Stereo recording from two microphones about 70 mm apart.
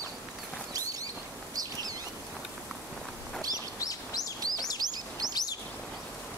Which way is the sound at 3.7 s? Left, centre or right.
Left.